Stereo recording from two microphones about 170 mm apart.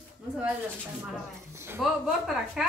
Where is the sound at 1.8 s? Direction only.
Centre (ahead or behind).